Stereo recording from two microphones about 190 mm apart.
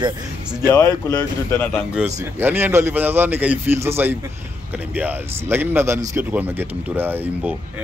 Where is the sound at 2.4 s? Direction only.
10° right (ahead or behind).